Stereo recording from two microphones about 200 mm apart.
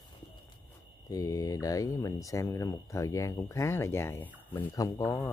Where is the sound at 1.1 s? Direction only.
15° left (ahead or behind).